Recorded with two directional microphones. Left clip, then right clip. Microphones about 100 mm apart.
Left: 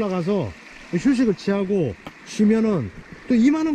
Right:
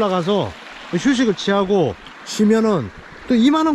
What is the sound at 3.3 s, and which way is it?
Speech, 55° right (ahead or behind).